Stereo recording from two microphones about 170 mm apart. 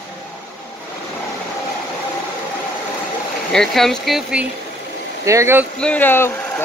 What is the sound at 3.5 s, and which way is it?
Speech, centre (ahead or behind).